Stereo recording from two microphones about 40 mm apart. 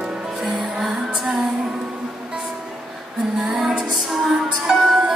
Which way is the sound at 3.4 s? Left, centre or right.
Centre.